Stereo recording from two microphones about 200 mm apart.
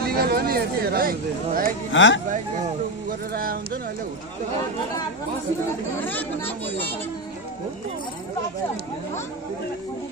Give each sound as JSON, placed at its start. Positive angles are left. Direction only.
{"t": 0.0, "sound": "speech", "side_deg": -50}
{"t": 1.9, "sound": "speech", "side_deg": 70}
{"t": 3.1, "sound": "speech", "side_deg": -45}
{"t": 6.0, "sound": "speech", "side_deg": 10}